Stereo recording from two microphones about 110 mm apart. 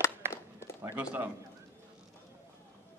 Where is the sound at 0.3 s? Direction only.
25° left (ahead or behind).